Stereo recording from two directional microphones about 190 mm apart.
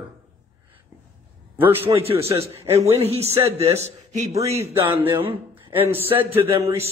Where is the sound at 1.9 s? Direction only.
30° right (ahead or behind).